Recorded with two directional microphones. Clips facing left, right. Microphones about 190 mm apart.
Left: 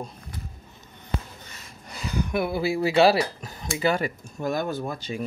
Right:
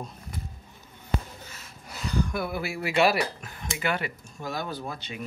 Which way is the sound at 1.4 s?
5° right (ahead or behind).